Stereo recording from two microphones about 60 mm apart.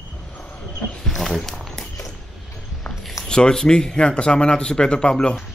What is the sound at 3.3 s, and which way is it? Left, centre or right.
Speech, centre.